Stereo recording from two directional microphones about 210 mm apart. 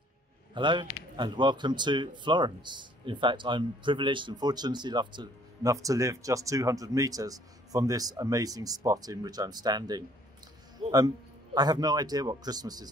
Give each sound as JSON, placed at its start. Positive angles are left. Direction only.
{"t": 0.6, "sound": "a man's voice", "side_deg": -20}
{"t": 10.8, "sound": "music", "side_deg": -25}
{"t": 11.5, "sound": "a man's voice", "side_deg": -20}